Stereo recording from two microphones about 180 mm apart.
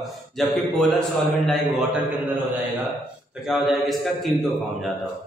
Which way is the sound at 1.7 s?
10° right (ahead or behind).